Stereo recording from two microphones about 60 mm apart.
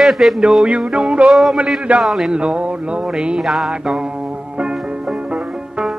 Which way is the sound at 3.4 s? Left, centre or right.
Centre.